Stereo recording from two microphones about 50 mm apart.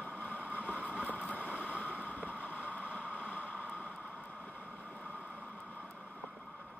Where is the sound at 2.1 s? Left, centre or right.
Right.